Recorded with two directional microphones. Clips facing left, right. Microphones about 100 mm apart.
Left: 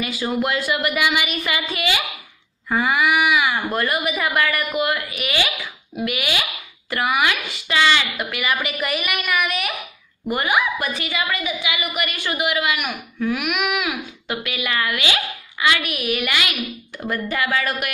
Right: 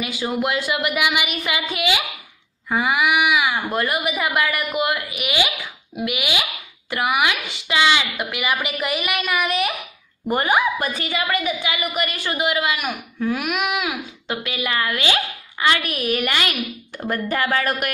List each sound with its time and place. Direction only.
0.0 s a woman's voice: 15° right (ahead or behind); by 17.9 s 45° right (ahead or behind)